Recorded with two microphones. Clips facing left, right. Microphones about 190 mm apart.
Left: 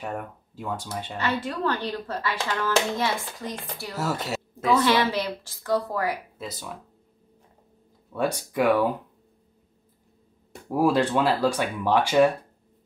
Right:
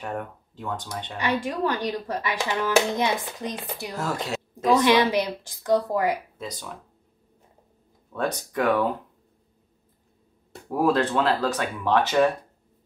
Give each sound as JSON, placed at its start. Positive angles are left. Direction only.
{"t": 0.0, "sound": "speech", "side_deg": 5}
{"t": 1.1, "sound": "speech", "side_deg": -15}
{"t": 3.9, "sound": "speech", "side_deg": 5}
{"t": 4.6, "sound": "speech", "side_deg": -15}
{"t": 6.3, "sound": "speech", "side_deg": 5}
{"t": 8.1, "sound": "speech", "side_deg": 10}
{"t": 10.7, "sound": "speech", "side_deg": 10}